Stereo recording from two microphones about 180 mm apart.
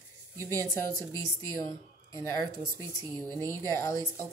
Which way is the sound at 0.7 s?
15° left (ahead or behind).